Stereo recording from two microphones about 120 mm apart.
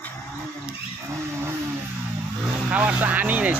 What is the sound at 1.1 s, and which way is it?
Cattle, 20° right (ahead or behind).